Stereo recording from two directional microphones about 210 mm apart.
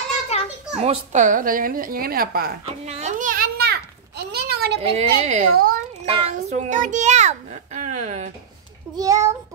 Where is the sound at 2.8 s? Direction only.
30° right (ahead or behind); by 4.7 s 50° right (ahead or behind).